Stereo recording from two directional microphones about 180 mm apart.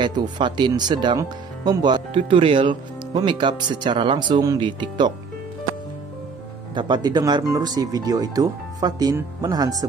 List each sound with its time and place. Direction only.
0.0 s speech: 25° right (ahead or behind)
6.7 s speech: 25° right (ahead or behind)